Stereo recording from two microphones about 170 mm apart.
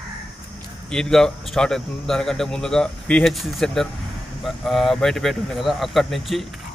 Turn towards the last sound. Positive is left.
turn(degrees=0)  # may be behind; listen again after turning